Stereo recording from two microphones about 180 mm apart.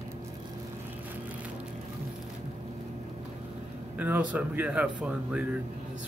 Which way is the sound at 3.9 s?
10° right (ahead or behind).